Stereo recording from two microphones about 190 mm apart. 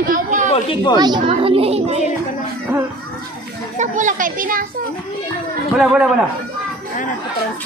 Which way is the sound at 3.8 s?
40° right (ahead or behind).